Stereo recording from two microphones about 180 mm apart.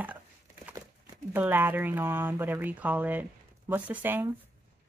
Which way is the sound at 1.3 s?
10° right (ahead or behind).